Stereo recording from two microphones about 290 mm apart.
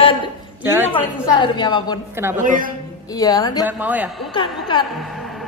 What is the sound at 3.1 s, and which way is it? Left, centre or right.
Speech, centre.